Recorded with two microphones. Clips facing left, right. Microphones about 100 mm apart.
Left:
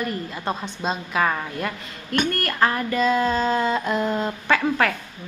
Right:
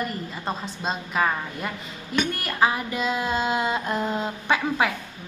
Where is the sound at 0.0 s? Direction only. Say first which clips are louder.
Left 2 dB; centre (ahead or behind).